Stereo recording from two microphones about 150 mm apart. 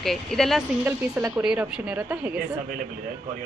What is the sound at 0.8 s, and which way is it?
Speech, 15° right (ahead or behind).